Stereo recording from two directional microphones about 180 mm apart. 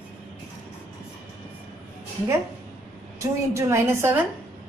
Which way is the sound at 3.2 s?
15° right (ahead or behind).